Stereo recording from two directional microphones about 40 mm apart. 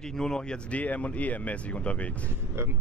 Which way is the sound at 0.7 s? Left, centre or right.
Left.